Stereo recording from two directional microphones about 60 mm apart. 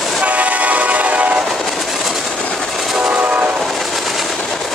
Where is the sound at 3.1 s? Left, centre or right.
Right.